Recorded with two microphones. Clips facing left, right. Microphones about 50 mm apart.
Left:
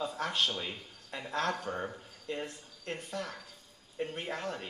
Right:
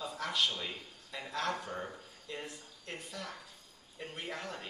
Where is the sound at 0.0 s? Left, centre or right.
Left.